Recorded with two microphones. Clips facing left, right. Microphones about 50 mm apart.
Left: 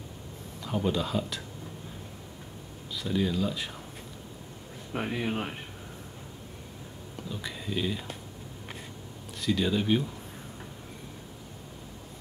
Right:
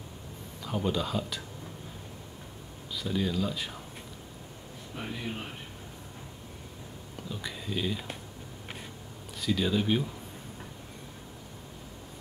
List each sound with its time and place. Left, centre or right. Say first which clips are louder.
0.7 s speech: left 1 dB; centre
3.0 s speech: left 2 dB; centre
4.9 s speech: left 6 dB; left
7.2 s speech: left 1 dB; centre
9.4 s speech: left 1 dB; centre